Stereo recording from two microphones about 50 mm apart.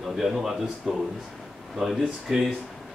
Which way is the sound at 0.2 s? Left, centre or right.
Centre.